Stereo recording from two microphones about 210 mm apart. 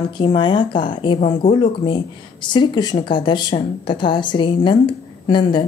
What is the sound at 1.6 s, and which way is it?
Speech, 25° left (ahead or behind).